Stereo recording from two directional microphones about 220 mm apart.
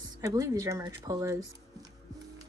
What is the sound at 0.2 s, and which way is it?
Speech, 15° right (ahead or behind).